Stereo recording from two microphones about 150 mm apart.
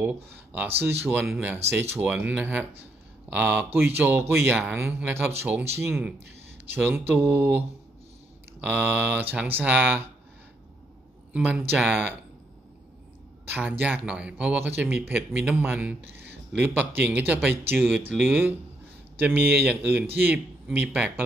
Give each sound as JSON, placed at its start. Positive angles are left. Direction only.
{"t": 0.0, "sound": "speech", "side_deg": -10}
{"t": 8.6, "sound": "speech", "side_deg": -10}
{"t": 11.3, "sound": "speech", "side_deg": -5}
{"t": 13.5, "sound": "speech", "side_deg": -10}